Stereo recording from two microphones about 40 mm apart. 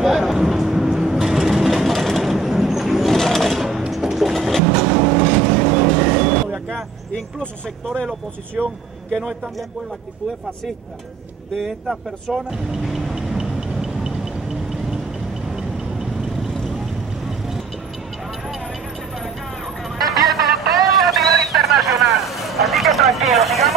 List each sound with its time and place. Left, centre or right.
0.0 s vehicle: centre
3.1 s sewing machine: centre
3.5 s sewing machine: centre
3.9 s vehicle: centre
8.6 s speech: right
11.6 s speech: centre
13.2 s a sound: centre
15.5 s vehicle: centre
20.0 s a sound: centre